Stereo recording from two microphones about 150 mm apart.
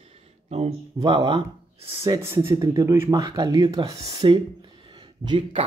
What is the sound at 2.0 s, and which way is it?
Speech, 20° right (ahead or behind).